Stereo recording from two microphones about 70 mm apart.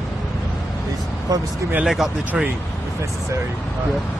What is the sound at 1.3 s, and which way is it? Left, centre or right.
Speech, right.